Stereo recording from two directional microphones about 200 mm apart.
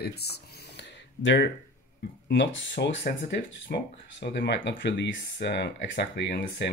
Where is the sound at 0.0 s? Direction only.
55° left (ahead or behind).